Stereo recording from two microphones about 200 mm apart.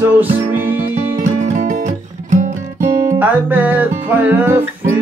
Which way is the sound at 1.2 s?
35° right (ahead or behind).